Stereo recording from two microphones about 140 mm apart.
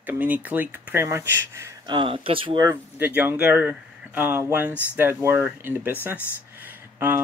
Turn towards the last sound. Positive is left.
turn(degrees=-15)  # may be behind; listen again after turning